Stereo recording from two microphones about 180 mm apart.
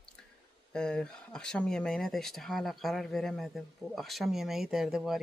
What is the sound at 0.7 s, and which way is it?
Speech, 5° left (ahead or behind).